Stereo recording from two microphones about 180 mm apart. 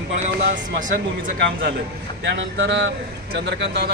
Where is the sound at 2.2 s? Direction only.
85° right.